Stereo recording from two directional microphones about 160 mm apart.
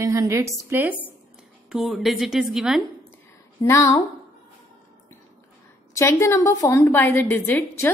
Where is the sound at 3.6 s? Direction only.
20° left (ahead or behind).